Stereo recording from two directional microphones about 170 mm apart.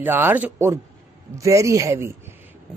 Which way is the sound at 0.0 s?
10° right (ahead or behind).